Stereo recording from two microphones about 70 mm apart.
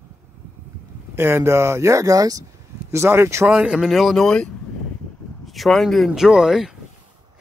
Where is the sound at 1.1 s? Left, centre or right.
Right.